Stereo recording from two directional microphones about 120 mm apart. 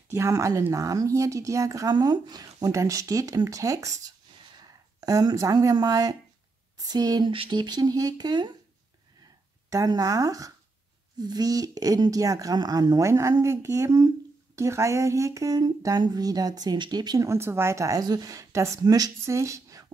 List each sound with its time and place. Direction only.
0.1 s speech: 25° right (ahead or behind)
9.7 s speech: 30° right (ahead or behind)